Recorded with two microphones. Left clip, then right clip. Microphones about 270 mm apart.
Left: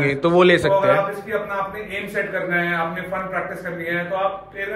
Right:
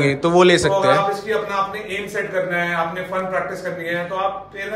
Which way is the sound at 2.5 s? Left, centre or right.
Right.